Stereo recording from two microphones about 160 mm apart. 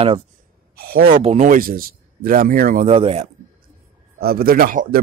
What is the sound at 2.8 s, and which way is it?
Speech, 40° right (ahead or behind).